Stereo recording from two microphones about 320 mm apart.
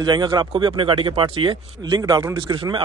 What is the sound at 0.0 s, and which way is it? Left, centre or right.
Speech, centre.